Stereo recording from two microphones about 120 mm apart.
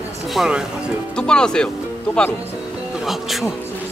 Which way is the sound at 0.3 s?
5° right (ahead or behind).